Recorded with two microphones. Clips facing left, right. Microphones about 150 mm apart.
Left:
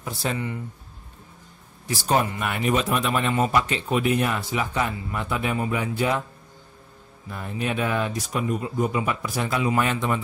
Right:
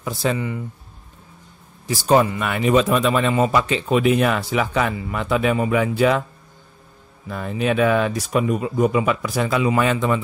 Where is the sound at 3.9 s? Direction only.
90° right.